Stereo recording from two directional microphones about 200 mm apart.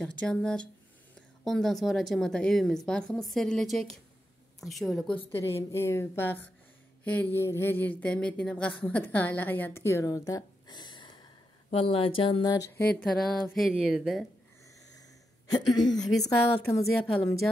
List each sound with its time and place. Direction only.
0.0 s a woman's voice: 5° left (ahead or behind)
12.8 s speech: 5° left (ahead or behind)
15.5 s a woman's voice: 20° left (ahead or behind)
16.8 s speech: centre (ahead or behind)